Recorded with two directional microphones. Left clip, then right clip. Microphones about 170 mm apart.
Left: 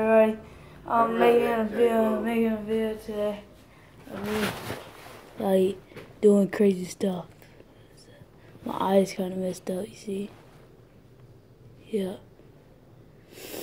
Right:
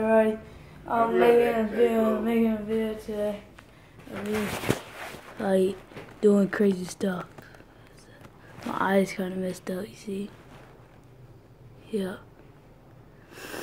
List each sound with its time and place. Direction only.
0.0 s a sound: centre (ahead or behind)
0.8 s a woman's voice: centre (ahead or behind)
5.4 s a woman's voice: 5° left (ahead or behind)
8.6 s a woman's voice: centre (ahead or behind)
11.9 s speech: centre (ahead or behind)
13.3 s a sound: centre (ahead or behind)